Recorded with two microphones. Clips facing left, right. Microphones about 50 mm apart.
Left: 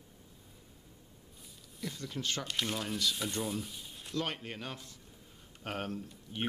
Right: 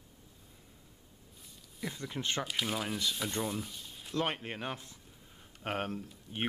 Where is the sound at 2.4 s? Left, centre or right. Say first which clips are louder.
Right 1 dB; centre.